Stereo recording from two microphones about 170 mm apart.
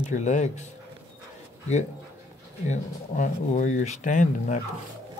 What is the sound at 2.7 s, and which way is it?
Speech, 45° left (ahead or behind).